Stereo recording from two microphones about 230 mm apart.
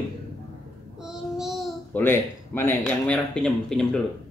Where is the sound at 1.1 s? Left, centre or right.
Centre.